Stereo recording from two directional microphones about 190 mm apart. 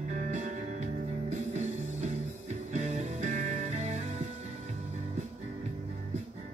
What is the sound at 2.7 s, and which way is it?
Music, 40° right (ahead or behind).